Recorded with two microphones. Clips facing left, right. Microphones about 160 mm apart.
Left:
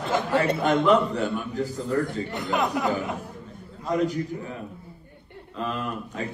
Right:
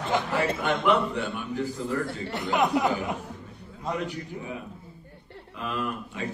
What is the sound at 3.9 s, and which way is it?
Speech, 40° left (ahead or behind).